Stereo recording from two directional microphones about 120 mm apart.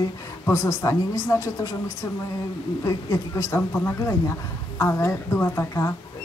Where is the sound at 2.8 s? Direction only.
25° left (ahead or behind).